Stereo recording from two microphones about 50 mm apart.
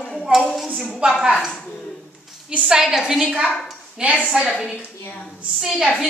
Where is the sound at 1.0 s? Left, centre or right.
Centre.